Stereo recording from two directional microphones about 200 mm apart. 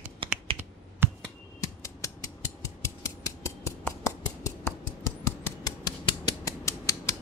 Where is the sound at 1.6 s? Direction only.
15° left (ahead or behind).